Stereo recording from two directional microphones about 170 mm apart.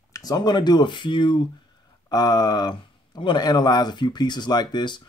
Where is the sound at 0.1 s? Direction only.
20° left (ahead or behind).